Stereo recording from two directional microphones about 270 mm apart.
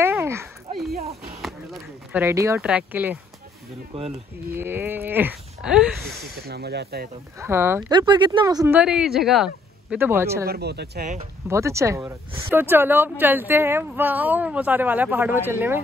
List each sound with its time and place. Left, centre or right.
0.0 s a sound: centre
4.5 s speech: centre
6.3 s speech: right
7.3 s speech: centre
10.4 s speech: right
11.4 s speech: centre